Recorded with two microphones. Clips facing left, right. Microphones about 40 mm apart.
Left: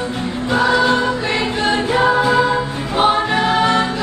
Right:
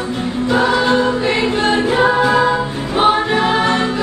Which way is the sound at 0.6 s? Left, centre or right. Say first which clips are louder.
Left 1 dB; right.